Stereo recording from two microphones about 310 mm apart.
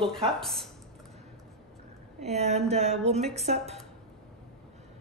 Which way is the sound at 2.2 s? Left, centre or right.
Right.